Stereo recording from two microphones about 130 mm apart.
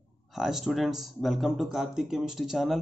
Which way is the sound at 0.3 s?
Centre (ahead or behind).